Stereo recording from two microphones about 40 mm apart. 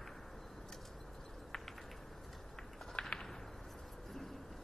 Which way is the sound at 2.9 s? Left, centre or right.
Left.